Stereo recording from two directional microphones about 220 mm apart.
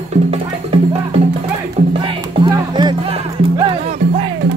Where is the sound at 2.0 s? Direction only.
15° right (ahead or behind).